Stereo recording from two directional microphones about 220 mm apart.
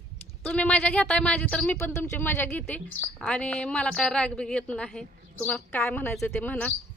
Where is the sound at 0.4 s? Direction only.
5° left (ahead or behind).